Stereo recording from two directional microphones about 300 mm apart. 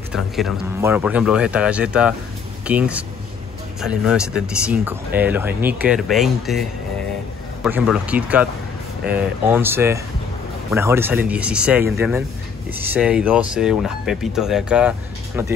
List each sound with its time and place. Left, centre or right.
0.1 s speech: centre
7.6 s speech: centre